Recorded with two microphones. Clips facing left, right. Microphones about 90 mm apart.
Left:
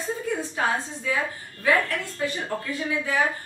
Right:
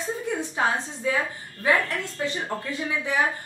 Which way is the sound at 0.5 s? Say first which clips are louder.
Right 2 dB; 25° right (ahead or behind).